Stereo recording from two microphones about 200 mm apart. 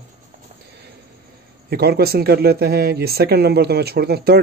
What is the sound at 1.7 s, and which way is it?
Speech, 50° right (ahead or behind).